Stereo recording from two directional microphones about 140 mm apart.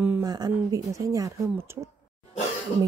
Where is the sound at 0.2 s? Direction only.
30° right (ahead or behind).